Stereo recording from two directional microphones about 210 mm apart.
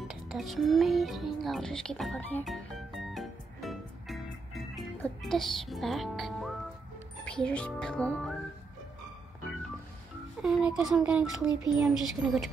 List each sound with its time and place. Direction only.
0.1 s music: centre (ahead or behind)
4.7 s speech: centre (ahead or behind)
7.2 s music: 5° left (ahead or behind)
10.4 s music: centre (ahead or behind)